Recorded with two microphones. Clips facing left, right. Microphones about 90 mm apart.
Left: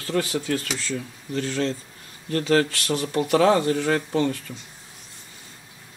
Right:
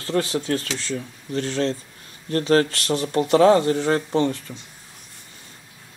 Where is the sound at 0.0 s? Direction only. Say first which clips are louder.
Right 2 dB; 35° right (ahead or behind).